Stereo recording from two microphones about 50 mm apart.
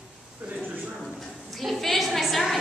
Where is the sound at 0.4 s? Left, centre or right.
Right.